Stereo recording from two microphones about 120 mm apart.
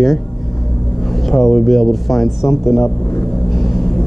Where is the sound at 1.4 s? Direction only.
Centre (ahead or behind).